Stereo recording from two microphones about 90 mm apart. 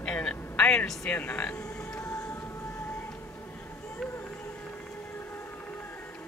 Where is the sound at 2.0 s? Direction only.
35° left (ahead or behind).